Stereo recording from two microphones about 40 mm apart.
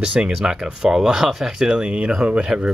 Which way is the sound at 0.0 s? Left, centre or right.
Right.